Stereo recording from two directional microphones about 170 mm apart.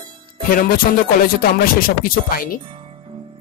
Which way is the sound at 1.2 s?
60° left (ahead or behind).